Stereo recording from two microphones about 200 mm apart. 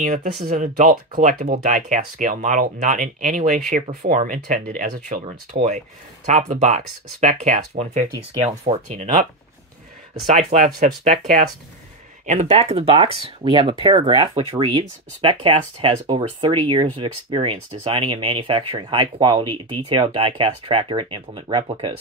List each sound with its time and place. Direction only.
0.0 s speech: 40° right (ahead or behind)
10.2 s speech: 35° right (ahead or behind)
12.3 s speech: 35° right (ahead or behind)